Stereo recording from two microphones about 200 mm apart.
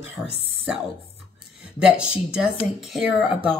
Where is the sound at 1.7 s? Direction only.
5° right (ahead or behind).